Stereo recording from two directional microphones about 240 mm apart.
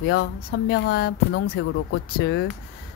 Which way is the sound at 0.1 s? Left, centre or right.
Left.